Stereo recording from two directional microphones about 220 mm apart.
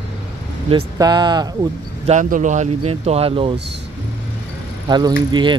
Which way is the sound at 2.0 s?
35° right (ahead or behind).